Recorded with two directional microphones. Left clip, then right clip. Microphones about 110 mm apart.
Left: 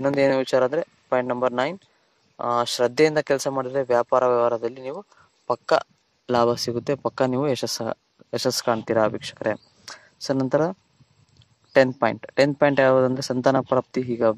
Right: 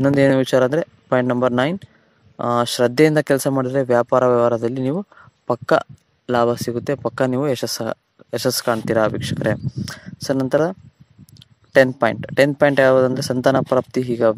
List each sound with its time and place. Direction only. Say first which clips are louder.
0.0 s speech: right 4 dB; 35° right (ahead or behind)